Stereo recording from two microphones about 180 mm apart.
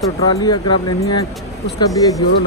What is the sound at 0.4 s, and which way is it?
Speech, 25° left (ahead or behind).